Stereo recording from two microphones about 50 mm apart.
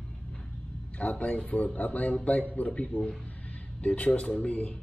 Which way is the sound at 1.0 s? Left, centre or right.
Left.